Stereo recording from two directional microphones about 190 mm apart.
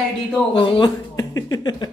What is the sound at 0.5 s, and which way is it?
Speech, 25° left (ahead or behind).